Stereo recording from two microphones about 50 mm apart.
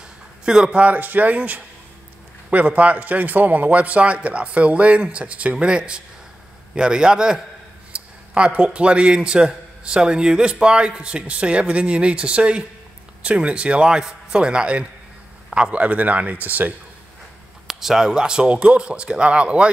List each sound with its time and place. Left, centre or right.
0.5 s a man's voice: centre
0.7 s a man's voice: right
17.6 s a man's voice: centre; by 19.7 s right